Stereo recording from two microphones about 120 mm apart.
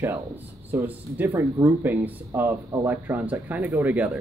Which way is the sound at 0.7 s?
15° right (ahead or behind).